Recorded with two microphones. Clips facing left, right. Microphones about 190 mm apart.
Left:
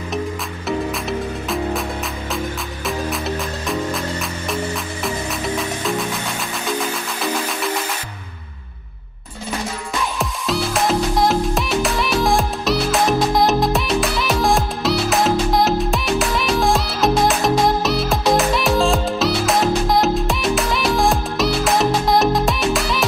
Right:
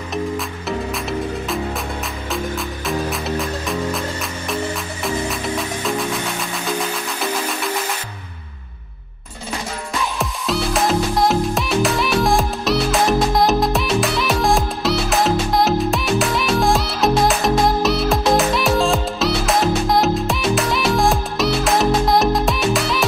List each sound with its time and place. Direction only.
0.7 s music: centre (ahead or behind)
3.1 s music: centre (ahead or behind)
10.1 s music: centre (ahead or behind)